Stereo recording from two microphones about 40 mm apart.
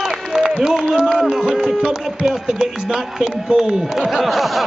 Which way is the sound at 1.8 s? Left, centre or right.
Centre.